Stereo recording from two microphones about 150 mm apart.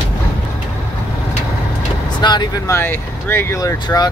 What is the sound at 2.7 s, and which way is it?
Speech, 15° left (ahead or behind).